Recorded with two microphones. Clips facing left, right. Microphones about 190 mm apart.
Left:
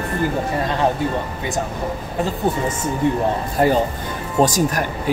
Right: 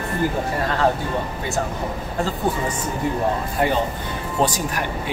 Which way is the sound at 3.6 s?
40° left (ahead or behind).